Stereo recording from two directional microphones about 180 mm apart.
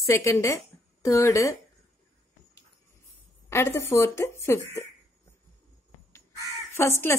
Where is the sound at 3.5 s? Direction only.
15° left (ahead or behind).